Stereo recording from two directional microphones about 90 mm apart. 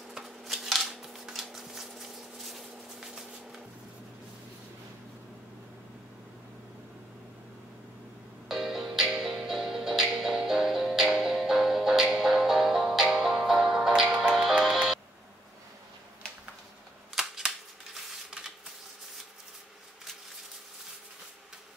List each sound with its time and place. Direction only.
0.1 s scissors: centre (ahead or behind)
8.5 s music: 5° right (ahead or behind)
17.1 s cap gun: 5° right (ahead or behind)
17.9 s a sound: 5° right (ahead or behind)